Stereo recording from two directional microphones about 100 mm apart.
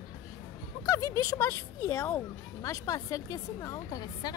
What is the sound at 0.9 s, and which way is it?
Speech, 35° left (ahead or behind).